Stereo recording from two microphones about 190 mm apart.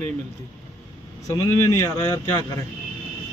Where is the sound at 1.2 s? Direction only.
15° left (ahead or behind).